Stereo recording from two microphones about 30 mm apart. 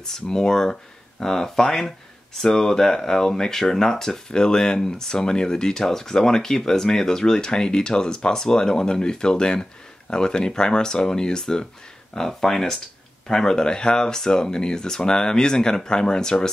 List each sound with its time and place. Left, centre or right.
0.0 s speech: centre
4.4 s speech: left
12.3 s speech: centre; by 16.4 s left